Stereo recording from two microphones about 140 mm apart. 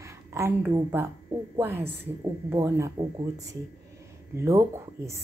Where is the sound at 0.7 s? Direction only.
20° right (ahead or behind).